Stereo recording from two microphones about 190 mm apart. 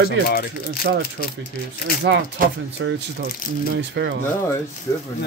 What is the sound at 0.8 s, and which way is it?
Speech, 60° right (ahead or behind).